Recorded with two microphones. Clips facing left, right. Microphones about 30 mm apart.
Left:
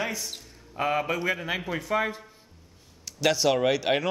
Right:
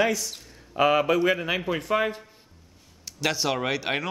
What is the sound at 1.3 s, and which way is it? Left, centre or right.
Speech, centre.